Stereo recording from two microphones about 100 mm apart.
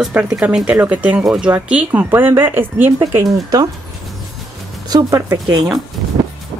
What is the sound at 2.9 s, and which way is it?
Speech, 35° right (ahead or behind).